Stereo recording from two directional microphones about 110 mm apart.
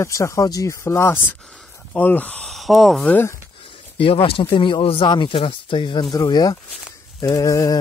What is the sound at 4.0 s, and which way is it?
Speech, 55° left (ahead or behind).